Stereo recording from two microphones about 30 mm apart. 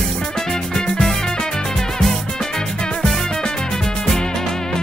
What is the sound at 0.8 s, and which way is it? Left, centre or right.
Music, left.